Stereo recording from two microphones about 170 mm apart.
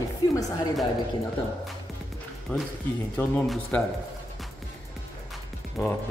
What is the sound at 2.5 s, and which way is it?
Speech, 5° left (ahead or behind).